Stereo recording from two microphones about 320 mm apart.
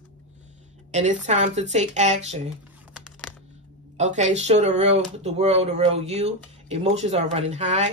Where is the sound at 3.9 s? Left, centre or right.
Right.